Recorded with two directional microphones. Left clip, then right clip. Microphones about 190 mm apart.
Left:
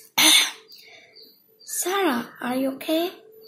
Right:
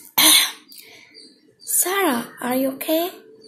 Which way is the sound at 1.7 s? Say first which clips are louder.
Right 3 dB; 20° right (ahead or behind).